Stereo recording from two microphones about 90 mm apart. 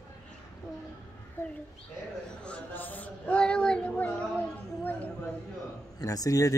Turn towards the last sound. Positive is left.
turn(degrees=40)  # may be behind; listen again after turning